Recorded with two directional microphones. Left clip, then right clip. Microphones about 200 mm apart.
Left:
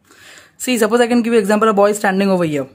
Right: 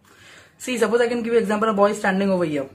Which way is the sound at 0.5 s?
55° left (ahead or behind).